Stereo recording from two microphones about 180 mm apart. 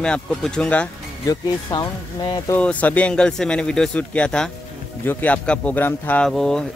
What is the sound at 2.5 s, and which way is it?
Speech, 10° left (ahead or behind).